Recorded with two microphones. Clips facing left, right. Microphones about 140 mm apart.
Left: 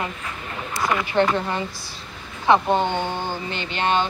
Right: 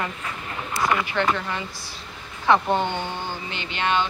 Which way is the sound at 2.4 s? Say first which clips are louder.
Left 2 dB; 20° left (ahead or behind).